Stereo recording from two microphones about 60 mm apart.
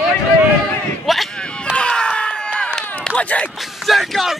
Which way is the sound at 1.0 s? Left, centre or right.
Centre.